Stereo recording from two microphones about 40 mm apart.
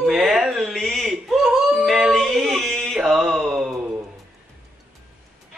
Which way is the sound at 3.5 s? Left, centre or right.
Centre.